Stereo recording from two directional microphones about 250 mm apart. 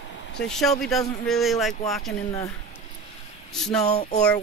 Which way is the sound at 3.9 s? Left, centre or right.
Left.